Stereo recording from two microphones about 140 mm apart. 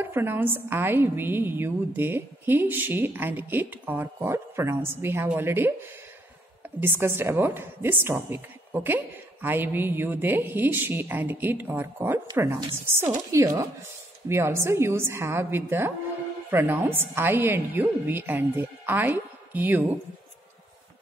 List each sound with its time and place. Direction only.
0.0 s a woman's voice: 15° right (ahead or behind)
13.3 s a woman's voice: 20° right (ahead or behind)